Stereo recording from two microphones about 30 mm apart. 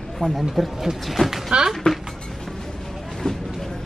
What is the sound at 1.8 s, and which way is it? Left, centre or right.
Speech, left.